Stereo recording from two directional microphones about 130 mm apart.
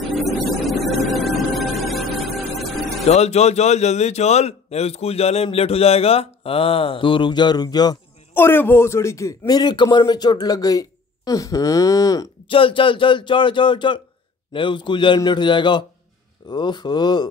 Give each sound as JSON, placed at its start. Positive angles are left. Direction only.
{"t": 0.0, "sound": "a sound", "side_deg": 0}
{"t": 3.1, "sound": "a man's voice", "side_deg": 55}
{"t": 8.4, "sound": "speech", "side_deg": 15}
{"t": 12.4, "sound": "speech", "side_deg": 40}